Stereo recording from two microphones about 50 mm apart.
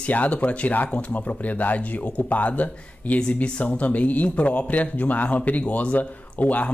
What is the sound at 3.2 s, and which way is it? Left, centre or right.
Speech, left.